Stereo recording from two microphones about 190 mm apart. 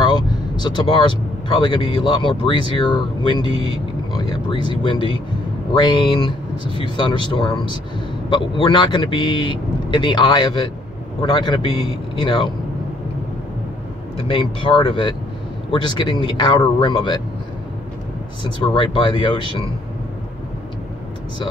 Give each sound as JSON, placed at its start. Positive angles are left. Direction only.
{"t": 0.0, "sound": "speech", "side_deg": 25}
{"t": 14.1, "sound": "speech", "side_deg": 30}
{"t": 18.6, "sound": "speech", "side_deg": 25}